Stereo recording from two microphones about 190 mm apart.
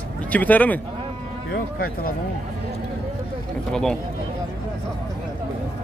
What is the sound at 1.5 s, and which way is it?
Speech, 50° left (ahead or behind).